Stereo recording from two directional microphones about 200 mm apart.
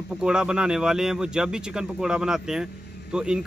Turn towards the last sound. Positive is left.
turn(degrees=-5)  # may be behind; listen again after turning